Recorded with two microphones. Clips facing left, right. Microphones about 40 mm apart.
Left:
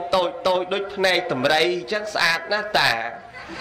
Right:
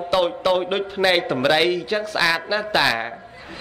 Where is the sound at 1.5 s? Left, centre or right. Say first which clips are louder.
Right 1 dB; centre.